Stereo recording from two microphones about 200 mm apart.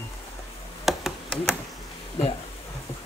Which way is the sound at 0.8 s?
Centre (ahead or behind).